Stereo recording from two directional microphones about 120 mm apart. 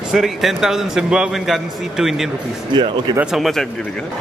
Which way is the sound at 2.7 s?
40° right (ahead or behind).